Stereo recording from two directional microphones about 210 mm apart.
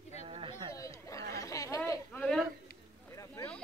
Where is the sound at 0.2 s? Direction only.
25° right (ahead or behind).